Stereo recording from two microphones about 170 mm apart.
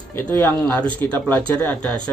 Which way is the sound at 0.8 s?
10° left (ahead or behind).